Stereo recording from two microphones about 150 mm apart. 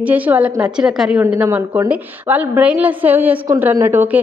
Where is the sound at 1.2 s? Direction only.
15° right (ahead or behind).